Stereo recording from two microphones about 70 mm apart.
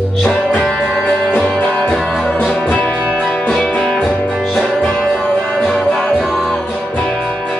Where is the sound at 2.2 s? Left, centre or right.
Centre.